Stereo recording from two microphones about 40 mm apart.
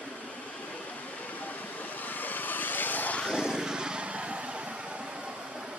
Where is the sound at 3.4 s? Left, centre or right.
Centre.